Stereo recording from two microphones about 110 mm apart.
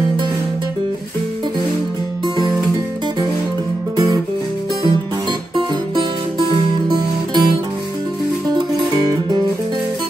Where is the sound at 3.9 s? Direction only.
30° right (ahead or behind).